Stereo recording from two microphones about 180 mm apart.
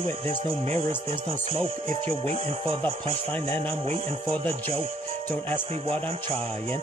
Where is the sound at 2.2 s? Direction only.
35° right (ahead or behind).